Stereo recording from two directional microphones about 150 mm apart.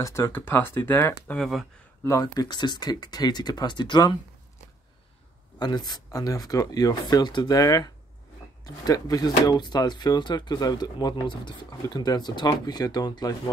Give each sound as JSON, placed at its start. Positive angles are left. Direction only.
{"t": 0.0, "sound": "speech", "side_deg": 15}
{"t": 1.4, "sound": "speech", "side_deg": 0}
{"t": 2.0, "sound": "speech", "side_deg": 25}
{"t": 5.6, "sound": "speech", "side_deg": 25}